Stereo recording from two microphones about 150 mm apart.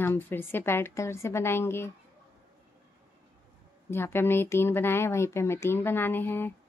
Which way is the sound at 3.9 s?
15° left (ahead or behind).